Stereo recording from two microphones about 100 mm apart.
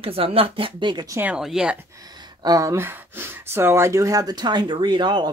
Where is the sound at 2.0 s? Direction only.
40° right (ahead or behind).